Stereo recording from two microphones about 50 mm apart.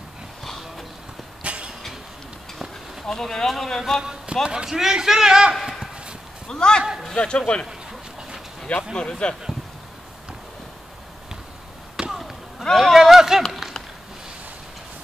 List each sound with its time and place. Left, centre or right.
0.4 s a sound: centre
1.4 s vehicle: right
2.6 s speech: centre
4.0 s speech: centre
4.6 s a man's voice: centre
6.4 s speech: centre
8.7 s speech: left
12.1 s basketball bounce: centre
12.7 s a sound: centre